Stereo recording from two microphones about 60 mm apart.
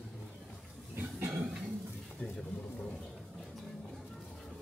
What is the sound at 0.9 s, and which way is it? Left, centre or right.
Cough, right.